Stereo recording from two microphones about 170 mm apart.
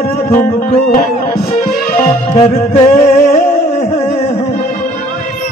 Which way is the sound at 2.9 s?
55° left (ahead or behind).